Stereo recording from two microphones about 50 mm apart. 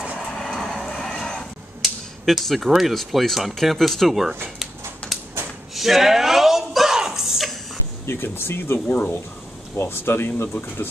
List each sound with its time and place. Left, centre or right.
0.3 s vehicle: centre
1.8 s speech: centre
5.1 s a sound: centre
8.1 s speech: left
8.7 s speech: left
9.8 s speech: left